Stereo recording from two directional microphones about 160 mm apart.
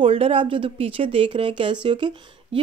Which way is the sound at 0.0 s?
35° right (ahead or behind).